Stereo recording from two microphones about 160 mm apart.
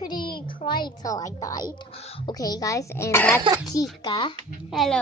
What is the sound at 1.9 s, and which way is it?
Speech, 40° left (ahead or behind).